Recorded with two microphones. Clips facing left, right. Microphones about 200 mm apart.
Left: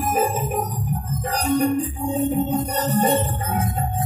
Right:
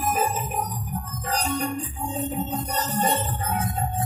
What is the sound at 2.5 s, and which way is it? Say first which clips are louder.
Music: left 6 dB; 55° left (ahead or behind).